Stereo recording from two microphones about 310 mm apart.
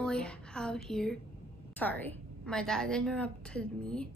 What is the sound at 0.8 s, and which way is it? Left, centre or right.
Speech, centre.